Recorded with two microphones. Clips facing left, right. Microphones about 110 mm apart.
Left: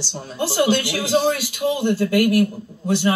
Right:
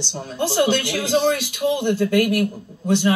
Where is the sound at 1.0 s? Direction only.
10° left (ahead or behind).